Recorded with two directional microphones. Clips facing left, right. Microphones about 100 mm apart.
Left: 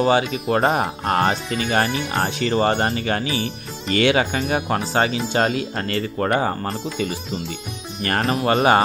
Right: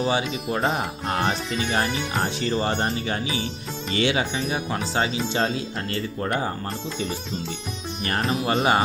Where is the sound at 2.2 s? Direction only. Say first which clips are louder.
Left 6 dB; 90° left; by 5.2 s 60° left (ahead or behind).